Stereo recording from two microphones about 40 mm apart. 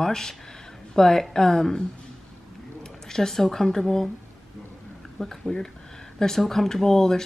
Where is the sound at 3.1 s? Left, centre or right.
Centre.